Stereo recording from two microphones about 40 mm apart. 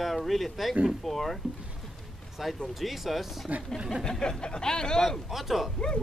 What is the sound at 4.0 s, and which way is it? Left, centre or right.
Speech, centre.